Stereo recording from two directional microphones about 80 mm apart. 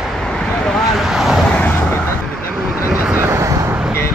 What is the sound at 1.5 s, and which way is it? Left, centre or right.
Vehicle, centre.